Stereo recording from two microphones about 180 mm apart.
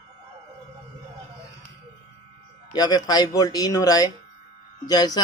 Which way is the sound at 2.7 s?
20° left (ahead or behind).